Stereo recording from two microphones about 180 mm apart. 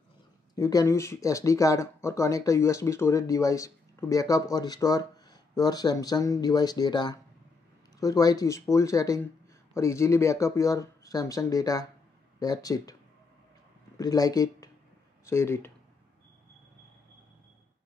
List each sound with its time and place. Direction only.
0.6 s speech: 20° left (ahead or behind)
13.9 s speech: 20° left (ahead or behind)